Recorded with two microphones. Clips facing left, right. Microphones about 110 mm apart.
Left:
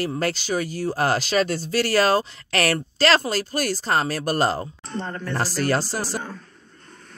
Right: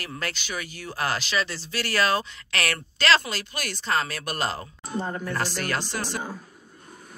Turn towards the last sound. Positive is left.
turn(degrees=35)  # may be behind; listen again after turning